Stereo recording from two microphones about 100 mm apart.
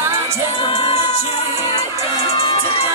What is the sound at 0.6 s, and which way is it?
Music, 60° left (ahead or behind).